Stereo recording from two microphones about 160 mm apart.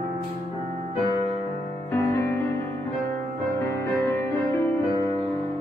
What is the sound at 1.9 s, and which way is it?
Music, 15° left (ahead or behind).